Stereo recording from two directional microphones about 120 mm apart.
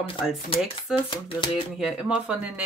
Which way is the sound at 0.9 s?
45° left (ahead or behind).